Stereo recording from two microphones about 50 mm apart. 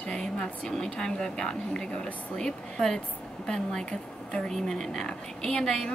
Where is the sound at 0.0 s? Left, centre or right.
Centre.